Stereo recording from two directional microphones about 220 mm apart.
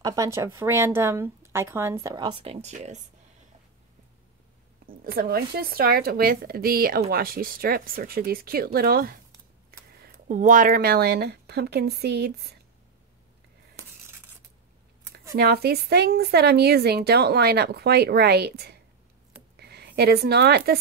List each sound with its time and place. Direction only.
0.0 s speech: 15° right (ahead or behind); by 3.0 s 30° right (ahead or behind)
4.8 s a woman's voice: 40° right (ahead or behind)
15.3 s a woman's voice: 45° right (ahead or behind)